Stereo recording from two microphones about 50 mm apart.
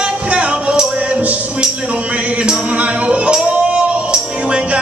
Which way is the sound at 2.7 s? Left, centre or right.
Right.